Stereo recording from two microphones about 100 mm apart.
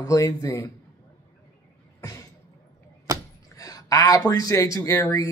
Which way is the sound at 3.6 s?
40° left (ahead or behind).